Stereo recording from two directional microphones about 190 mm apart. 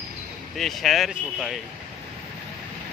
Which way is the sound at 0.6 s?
Centre (ahead or behind).